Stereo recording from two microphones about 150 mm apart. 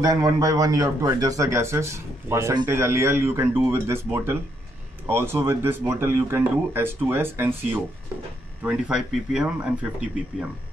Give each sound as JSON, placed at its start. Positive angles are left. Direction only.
{"t": 0.0, "sound": "a man's voice", "side_deg": -25}